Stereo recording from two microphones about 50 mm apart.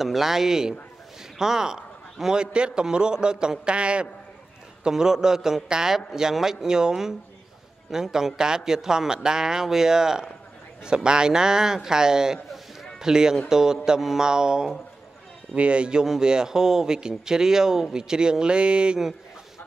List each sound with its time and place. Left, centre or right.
0.0 s a man's voice: centre; by 4.1 s right
4.8 s a man's voice: centre